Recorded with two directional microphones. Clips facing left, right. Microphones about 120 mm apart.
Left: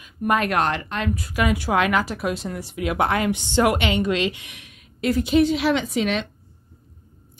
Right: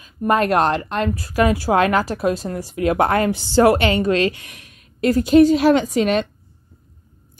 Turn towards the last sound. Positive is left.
turn(degrees=-45)  # may be behind; listen again after turning